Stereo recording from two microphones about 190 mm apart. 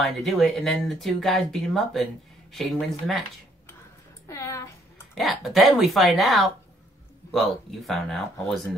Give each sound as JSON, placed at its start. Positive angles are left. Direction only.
{"t": 0.0, "sound": "speech", "side_deg": 0}
{"t": 4.3, "sound": "a sound", "side_deg": 15}
{"t": 5.1, "sound": "speech", "side_deg": 0}